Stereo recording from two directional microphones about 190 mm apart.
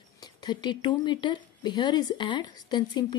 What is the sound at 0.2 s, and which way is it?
A woman's voice, 20° left (ahead or behind).